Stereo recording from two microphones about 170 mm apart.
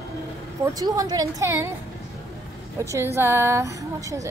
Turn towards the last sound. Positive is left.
turn(degrees=-20)  # may be behind; listen again after turning